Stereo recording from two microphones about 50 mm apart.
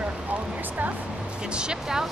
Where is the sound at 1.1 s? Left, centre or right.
Centre.